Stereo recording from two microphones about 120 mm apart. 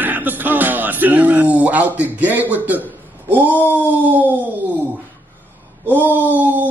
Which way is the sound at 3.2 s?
15° right (ahead or behind).